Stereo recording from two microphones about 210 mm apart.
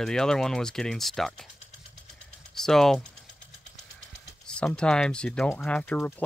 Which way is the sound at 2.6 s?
Centre (ahead or behind).